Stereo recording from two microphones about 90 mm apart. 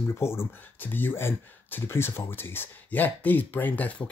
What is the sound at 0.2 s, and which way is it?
Speech, 30° left (ahead or behind).